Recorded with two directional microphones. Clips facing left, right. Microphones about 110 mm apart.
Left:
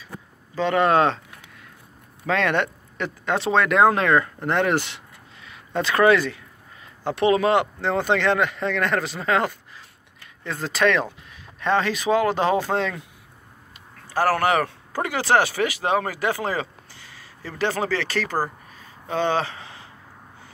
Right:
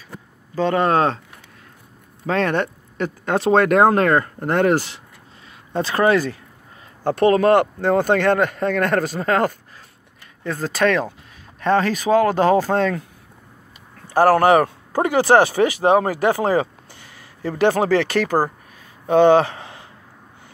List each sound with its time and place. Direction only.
0.6 s speech: 40° right (ahead or behind)
2.2 s speech: 40° right (ahead or behind)
14.0 s speech: 20° right (ahead or behind)
19.2 s speech: 55° right (ahead or behind)